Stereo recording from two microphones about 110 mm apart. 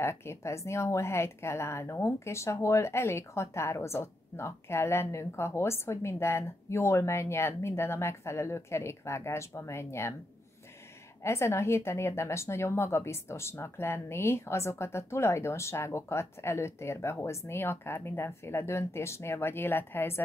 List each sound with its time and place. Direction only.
0.0 s a woman's voice: 25° left (ahead or behind)
11.2 s a woman's voice: 25° left (ahead or behind)